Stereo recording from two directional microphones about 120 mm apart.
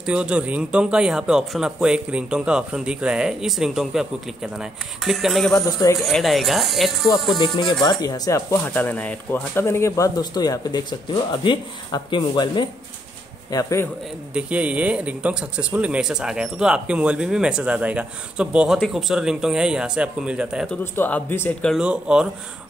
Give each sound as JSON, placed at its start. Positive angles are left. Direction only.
{"t": 0.0, "sound": "a man's voice", "side_deg": -10}
{"t": 7.3, "sound": "speech", "side_deg": 40}
{"t": 8.7, "sound": "speech", "side_deg": 10}
{"t": 13.5, "sound": "speech", "side_deg": 30}
{"t": 14.3, "sound": "a man's voice", "side_deg": -10}
{"t": 20.8, "sound": "a man's voice", "side_deg": 15}
{"t": 21.7, "sound": "a man's voice", "side_deg": -10}